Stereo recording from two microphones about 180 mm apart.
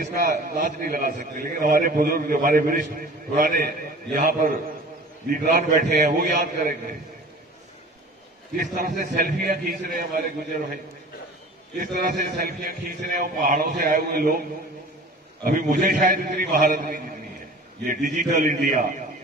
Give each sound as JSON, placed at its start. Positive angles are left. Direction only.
{"t": 0.0, "sound": "a man's voice", "side_deg": -45}
{"t": 8.7, "sound": "a man's voice", "side_deg": -45}
{"t": 11.8, "sound": "a man's voice", "side_deg": -50}
{"t": 15.4, "sound": "a man's voice", "side_deg": -50}